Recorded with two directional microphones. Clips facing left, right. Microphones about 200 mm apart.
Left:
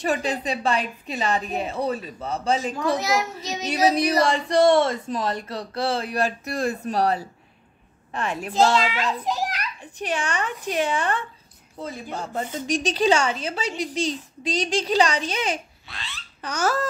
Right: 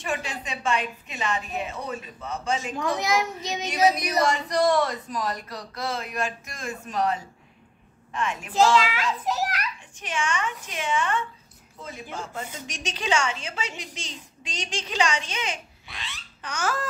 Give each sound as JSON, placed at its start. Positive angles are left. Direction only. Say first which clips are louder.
{"t": 0.0, "sound": "a woman's voice", "louder": "left 7 dB", "side_deg": 35}
{"t": 3.0, "sound": "a child's voice", "louder": "left 1 dB", "side_deg": -20}
{"t": 3.9, "sound": "a woman's voice", "louder": "left 4 dB", "side_deg": 30}
{"t": 9.2, "sound": "children playing", "louder": "left 1 dB", "side_deg": -5}
{"t": 9.9, "sound": "a woman's voice", "louder": "left 3 dB", "side_deg": 35}
{"t": 15.9, "sound": "baby laughter", "louder": "left 1 dB", "side_deg": -15}
{"t": 16.3, "sound": "babbling", "louder": "left 5 dB", "side_deg": 35}